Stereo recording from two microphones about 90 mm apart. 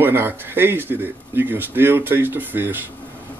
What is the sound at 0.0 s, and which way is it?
Speech, 25° right (ahead or behind).